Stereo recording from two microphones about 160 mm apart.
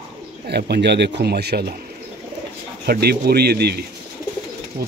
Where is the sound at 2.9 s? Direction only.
80° right.